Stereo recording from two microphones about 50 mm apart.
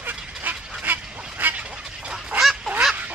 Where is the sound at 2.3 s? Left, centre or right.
Right.